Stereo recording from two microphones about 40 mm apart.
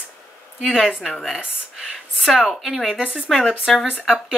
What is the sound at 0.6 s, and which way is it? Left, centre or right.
Speech, centre.